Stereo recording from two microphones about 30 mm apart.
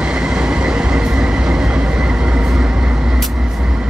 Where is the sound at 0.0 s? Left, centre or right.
Right.